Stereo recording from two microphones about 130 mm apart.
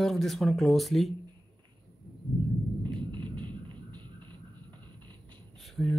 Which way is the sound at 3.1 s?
35° right (ahead or behind).